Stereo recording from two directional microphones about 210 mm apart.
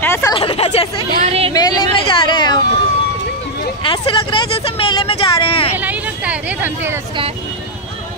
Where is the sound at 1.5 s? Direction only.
20° left (ahead or behind).